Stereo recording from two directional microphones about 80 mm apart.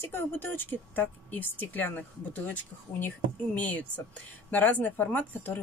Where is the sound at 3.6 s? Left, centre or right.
Centre.